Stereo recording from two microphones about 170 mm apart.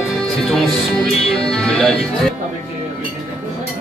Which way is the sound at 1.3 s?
Centre (ahead or behind).